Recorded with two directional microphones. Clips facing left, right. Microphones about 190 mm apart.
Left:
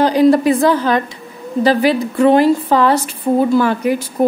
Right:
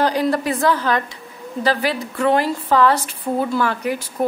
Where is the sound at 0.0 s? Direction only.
20° left (ahead or behind).